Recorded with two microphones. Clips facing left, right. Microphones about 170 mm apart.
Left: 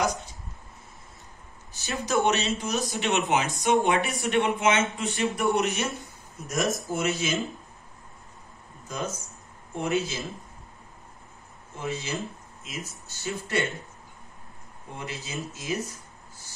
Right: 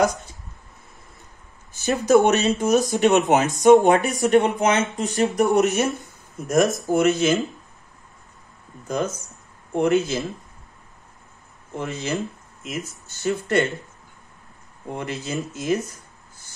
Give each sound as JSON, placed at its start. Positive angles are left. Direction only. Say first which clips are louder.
{"t": 1.7, "sound": "speech", "louder": "right 12 dB", "side_deg": -50}
{"t": 9.8, "sound": "speech", "louder": "right 8 dB", "side_deg": -55}
{"t": 11.8, "sound": "speech", "louder": "right 5 dB", "side_deg": -55}
{"t": 15.0, "sound": "speech", "louder": "right 7 dB", "side_deg": -55}